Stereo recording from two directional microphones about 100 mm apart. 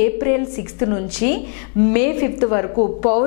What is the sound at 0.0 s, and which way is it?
A woman's voice, 15° left (ahead or behind).